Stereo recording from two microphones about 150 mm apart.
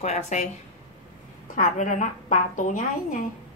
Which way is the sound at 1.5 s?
60° left (ahead or behind).